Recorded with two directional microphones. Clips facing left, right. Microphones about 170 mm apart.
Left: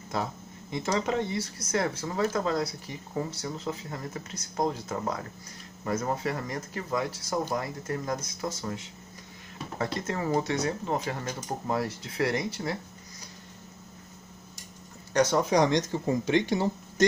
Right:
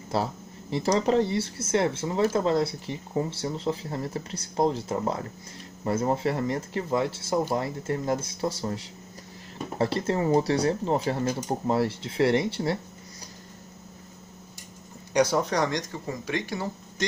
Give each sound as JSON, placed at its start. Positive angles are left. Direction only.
{"t": 0.1, "sound": "speech", "side_deg": -30}
{"t": 15.1, "sound": "speech", "side_deg": -10}
{"t": 15.4, "sound": "speech", "side_deg": 15}